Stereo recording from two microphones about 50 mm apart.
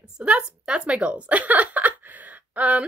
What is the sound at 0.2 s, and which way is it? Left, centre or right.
Speech, right.